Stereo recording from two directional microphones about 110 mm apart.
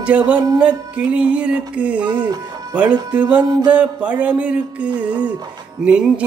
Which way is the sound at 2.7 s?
10° right (ahead or behind).